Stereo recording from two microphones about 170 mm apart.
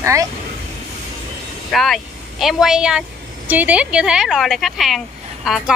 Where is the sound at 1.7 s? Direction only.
Centre (ahead or behind).